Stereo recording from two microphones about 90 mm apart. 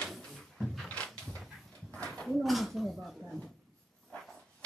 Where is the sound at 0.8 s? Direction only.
10° left (ahead or behind).